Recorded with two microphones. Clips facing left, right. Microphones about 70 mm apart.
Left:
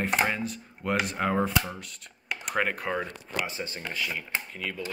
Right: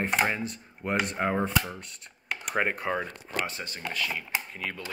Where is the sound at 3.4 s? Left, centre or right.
Left.